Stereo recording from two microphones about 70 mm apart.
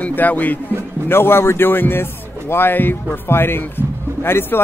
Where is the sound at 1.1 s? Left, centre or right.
Left.